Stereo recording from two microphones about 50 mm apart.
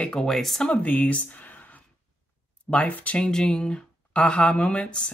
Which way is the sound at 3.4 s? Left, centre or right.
Centre.